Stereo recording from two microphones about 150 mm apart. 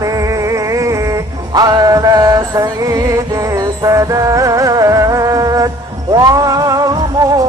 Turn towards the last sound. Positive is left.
turn(degrees=-25)  # may be behind; listen again after turning